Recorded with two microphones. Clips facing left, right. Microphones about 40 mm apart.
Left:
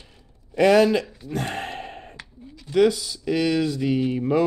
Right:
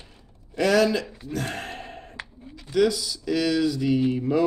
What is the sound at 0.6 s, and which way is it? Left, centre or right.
Speech, left.